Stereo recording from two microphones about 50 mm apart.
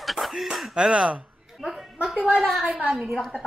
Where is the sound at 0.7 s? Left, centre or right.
Right.